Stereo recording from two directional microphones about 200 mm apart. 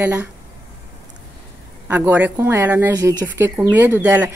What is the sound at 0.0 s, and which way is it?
Speech, 10° right (ahead or behind).